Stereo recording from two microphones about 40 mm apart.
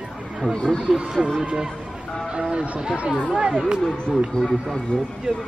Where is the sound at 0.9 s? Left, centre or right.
Right.